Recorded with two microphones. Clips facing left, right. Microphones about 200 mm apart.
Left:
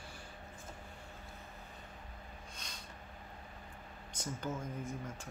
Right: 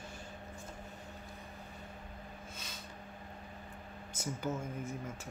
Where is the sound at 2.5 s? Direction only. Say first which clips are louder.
Right 3 dB; 5° right (ahead or behind).